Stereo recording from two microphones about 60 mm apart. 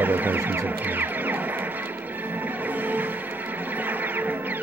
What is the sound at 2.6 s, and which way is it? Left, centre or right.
Music, right.